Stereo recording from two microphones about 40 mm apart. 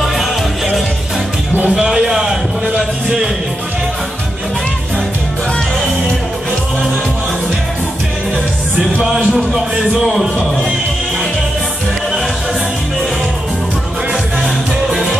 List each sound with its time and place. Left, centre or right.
1.9 s a sound: centre
9.5 s speech: centre
14.4 s music: centre